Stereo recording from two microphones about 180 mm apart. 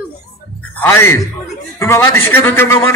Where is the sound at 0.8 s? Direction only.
15° left (ahead or behind).